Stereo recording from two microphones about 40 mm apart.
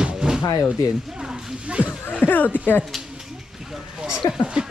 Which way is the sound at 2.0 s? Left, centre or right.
Left.